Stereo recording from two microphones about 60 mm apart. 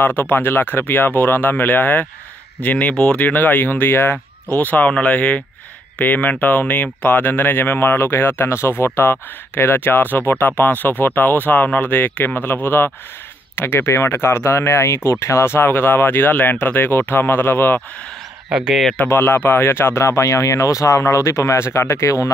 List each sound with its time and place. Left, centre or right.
0.0 s speech: left
18.5 s speech: centre
19.0 s speech: left